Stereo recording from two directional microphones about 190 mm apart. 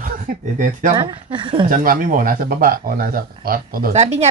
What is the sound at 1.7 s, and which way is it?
Speech, 45° right (ahead or behind).